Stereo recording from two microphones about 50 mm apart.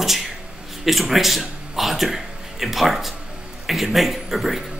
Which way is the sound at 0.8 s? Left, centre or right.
Centre.